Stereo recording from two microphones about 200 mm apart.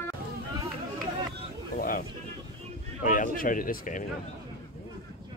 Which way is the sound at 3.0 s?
40° left (ahead or behind).